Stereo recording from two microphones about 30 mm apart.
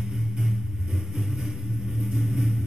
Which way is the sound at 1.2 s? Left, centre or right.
Centre.